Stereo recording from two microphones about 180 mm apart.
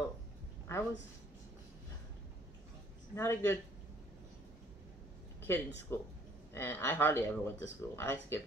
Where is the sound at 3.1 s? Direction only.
15° left (ahead or behind).